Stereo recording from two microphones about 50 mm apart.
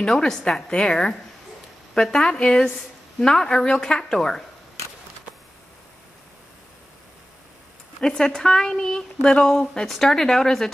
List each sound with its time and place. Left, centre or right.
0.0 s a woman's voice: centre
8.0 s a woman's voice: centre